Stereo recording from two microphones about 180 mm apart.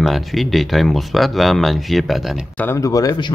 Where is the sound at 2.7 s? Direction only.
20° left (ahead or behind).